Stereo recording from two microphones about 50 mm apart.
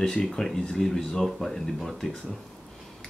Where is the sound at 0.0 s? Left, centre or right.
Centre.